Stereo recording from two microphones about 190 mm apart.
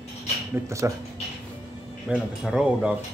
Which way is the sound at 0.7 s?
15° right (ahead or behind).